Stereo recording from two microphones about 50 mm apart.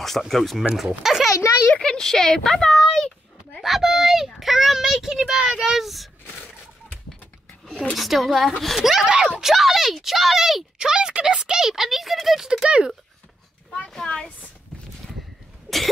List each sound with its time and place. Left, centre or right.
0.3 s a child's voice: centre
1.7 s speech: centre
2.8 s a sound: centre
3.6 s a sound: centre
5.6 s speech: centre
7.9 s speech: centre
10.8 s speech: centre
12.6 s speech: centre
13.7 s a sound: centre